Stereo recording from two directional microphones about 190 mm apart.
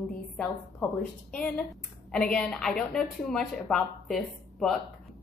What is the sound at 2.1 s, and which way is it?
A woman's voice, 5° left (ahead or behind).